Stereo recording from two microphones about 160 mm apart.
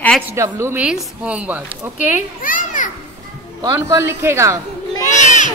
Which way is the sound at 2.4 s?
55° left (ahead or behind).